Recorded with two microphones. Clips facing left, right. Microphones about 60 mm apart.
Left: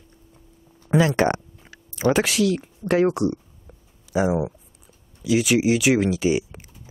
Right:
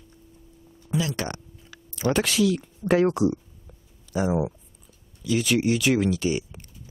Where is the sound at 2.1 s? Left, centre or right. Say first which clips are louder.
Even; centre.